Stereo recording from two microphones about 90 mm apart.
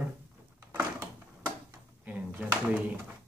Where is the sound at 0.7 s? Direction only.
25° right (ahead or behind).